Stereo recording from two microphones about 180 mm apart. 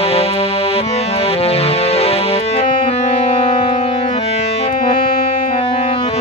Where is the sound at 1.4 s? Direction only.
35° left (ahead or behind).